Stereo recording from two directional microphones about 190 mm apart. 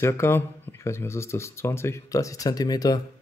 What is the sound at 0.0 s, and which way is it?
Speech, 15° left (ahead or behind).